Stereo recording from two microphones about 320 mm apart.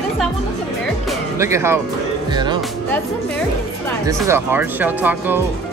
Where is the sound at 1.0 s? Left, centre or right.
Centre.